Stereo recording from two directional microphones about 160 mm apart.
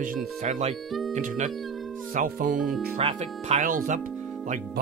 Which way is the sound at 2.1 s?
55° right (ahead or behind).